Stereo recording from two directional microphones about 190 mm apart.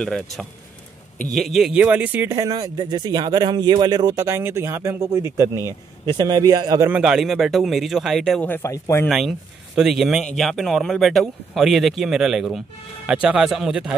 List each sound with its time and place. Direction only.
0.0 s a man's voice: 5° left (ahead or behind); by 6.9 s 20° right (ahead or behind)
6.9 s speech: 5° right (ahead or behind); by 9.1 s 15° left (ahead or behind)
9.1 s speech: centre (ahead or behind)